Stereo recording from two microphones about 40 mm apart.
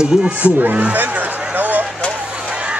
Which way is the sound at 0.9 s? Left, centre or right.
Right.